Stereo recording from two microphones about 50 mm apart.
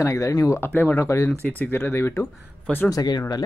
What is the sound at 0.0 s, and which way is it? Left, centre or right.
Speech, left.